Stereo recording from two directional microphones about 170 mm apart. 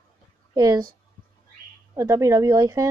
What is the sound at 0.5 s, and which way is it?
Speech, 20° right (ahead or behind).